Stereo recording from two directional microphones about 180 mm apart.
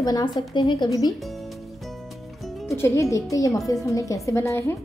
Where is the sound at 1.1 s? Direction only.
Centre (ahead or behind).